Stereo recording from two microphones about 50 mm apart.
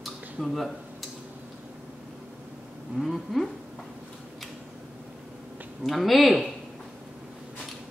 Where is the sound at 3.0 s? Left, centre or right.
Centre.